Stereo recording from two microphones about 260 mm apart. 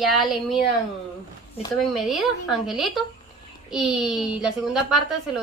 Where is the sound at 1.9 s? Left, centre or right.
Centre.